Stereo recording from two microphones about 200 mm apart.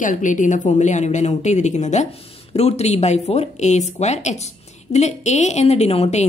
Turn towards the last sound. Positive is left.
turn(degrees=30)  # may be behind; listen again after turning